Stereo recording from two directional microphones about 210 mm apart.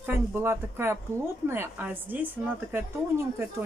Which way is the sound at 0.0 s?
10° right (ahead or behind).